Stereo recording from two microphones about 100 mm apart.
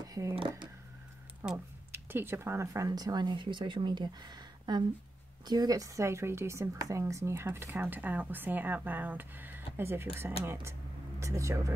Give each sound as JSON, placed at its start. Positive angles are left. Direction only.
{"t": 0.1, "sound": "speech", "side_deg": -35}
{"t": 1.4, "sound": "speech", "side_deg": -25}